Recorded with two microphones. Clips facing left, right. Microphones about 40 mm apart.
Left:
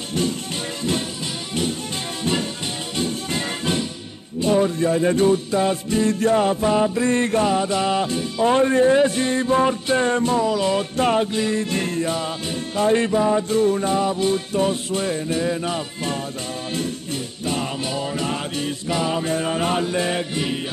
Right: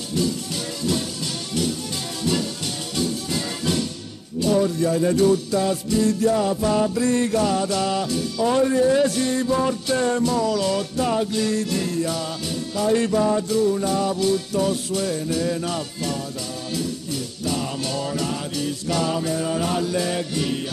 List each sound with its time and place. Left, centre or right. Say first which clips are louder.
3.0 s music: even; left
11.0 s music: left 4 dB; left
11.3 s music: left 1 dB; left
13.5 s music: left 2 dB; left
17.8 s music: left 1 dB; left
19.2 s music: left 2 dB; left